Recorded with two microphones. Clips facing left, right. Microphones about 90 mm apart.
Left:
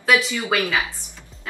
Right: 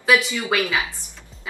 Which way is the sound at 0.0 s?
Centre (ahead or behind).